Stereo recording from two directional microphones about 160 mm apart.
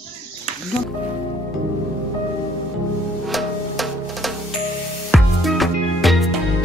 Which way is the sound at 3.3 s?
Centre (ahead or behind).